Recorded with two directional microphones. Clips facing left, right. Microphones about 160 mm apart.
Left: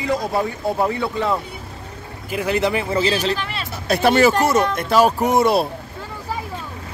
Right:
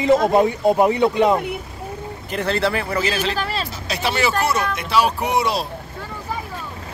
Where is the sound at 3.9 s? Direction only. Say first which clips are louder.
Left 8 dB; 50° left (ahead or behind).